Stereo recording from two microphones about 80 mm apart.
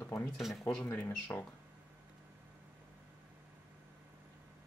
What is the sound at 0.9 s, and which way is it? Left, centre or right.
Speech, left.